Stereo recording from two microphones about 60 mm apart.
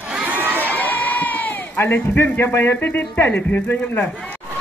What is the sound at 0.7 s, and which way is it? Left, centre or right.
Speech, left.